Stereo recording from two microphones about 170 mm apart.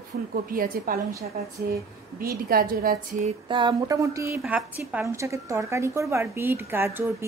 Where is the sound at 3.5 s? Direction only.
25° right (ahead or behind).